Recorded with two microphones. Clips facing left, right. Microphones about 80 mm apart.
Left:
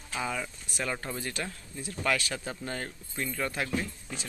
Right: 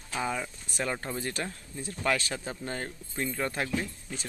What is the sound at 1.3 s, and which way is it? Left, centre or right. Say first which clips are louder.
Speech: right 1 dB; right.